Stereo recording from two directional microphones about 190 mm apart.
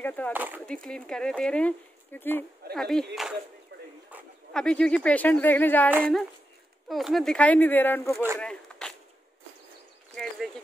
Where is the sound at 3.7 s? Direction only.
65° right (ahead or behind).